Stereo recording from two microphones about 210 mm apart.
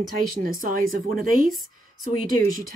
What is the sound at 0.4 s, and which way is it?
Speech, 40° right (ahead or behind).